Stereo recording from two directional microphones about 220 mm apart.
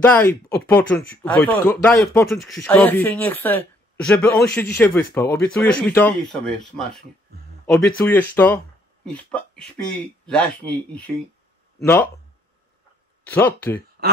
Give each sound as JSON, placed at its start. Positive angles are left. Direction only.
{"t": 0.0, "sound": "speech", "side_deg": 10}
{"t": 7.6, "sound": "speech", "side_deg": 5}
{"t": 13.2, "sound": "speech", "side_deg": 10}